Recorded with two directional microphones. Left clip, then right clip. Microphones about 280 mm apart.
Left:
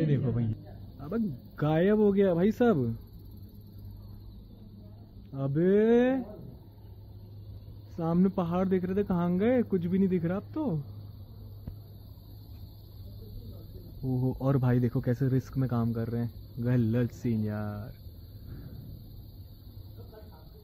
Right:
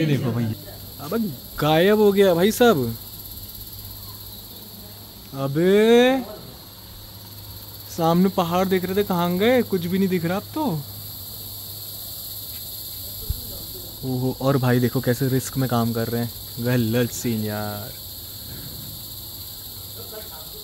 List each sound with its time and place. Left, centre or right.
1.0 s cricket: centre
5.3 s cricket: centre
7.9 s cricket: right
14.1 s cricket: centre